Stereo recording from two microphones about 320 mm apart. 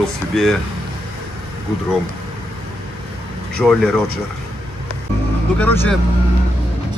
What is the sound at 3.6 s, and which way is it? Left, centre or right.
Speech, centre.